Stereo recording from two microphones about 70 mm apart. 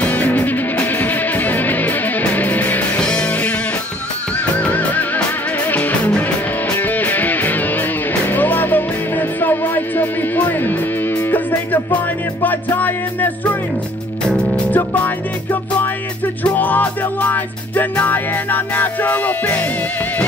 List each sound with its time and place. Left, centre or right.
0.0 s music: left
4.6 s music: left
14.7 s music: left
16.5 s music: left